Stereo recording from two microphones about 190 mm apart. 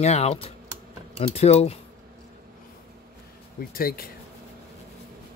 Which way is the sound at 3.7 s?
50° left (ahead or behind).